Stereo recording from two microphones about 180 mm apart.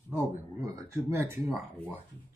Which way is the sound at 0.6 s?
15° right (ahead or behind).